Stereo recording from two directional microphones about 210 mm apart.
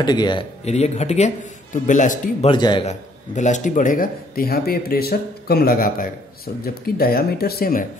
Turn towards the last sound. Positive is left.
turn(degrees=45)  # may be behind; listen again after turning